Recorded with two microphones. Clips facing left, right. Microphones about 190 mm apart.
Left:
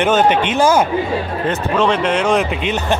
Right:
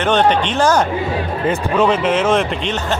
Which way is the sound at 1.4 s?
5° right (ahead or behind).